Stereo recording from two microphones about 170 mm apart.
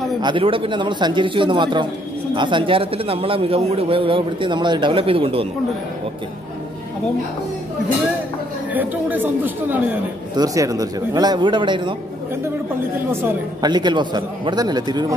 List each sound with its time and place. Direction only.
0.2 s a man's voice: 30° right (ahead or behind)
8.7 s a man's voice: 10° right (ahead or behind); by 11.9 s 25° right (ahead or behind)
13.6 s a man's voice: 25° right (ahead or behind)